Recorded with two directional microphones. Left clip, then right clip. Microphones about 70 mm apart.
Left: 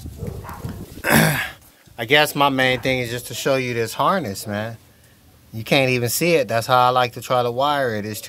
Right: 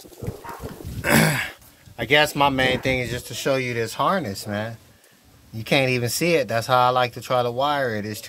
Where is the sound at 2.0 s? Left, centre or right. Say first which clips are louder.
Left 2 dB; centre.